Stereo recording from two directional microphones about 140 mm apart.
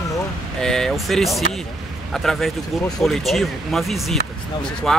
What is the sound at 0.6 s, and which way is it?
Speech, 5° left (ahead or behind).